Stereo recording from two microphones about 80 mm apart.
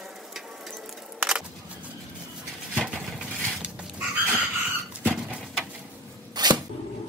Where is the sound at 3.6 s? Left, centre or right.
Centre.